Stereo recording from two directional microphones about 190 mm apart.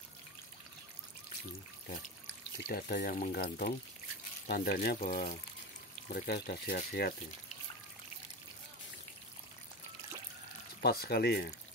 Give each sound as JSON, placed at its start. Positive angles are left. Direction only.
{"t": 2.6, "sound": "speech", "side_deg": 50}
{"t": 10.8, "sound": "speech", "side_deg": 55}